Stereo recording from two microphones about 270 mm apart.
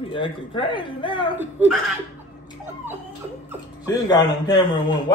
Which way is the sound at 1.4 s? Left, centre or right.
Centre.